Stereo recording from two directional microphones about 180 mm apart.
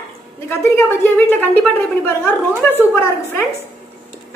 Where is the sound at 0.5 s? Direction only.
15° left (ahead or behind).